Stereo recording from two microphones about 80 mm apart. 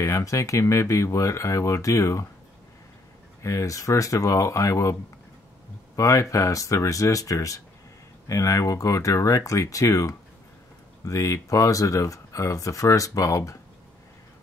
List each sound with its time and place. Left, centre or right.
0.0 s speech: left
3.4 s speech: left
5.9 s speech: left